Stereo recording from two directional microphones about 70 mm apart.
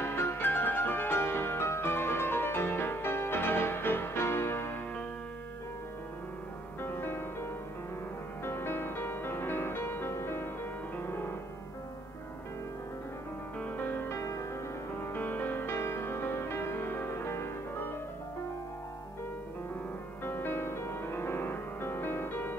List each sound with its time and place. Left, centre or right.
0.0 s music: left
6.8 s music: left
8.5 s music: left
13.6 s music: left
15.1 s music: left
20.2 s music: left